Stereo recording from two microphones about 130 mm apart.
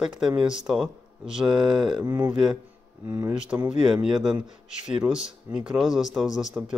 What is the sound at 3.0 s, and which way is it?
Speech, 20° right (ahead or behind).